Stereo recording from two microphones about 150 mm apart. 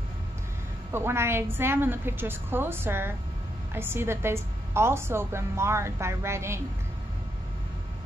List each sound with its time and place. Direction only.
0.9 s a woman's voice: 15° right (ahead or behind)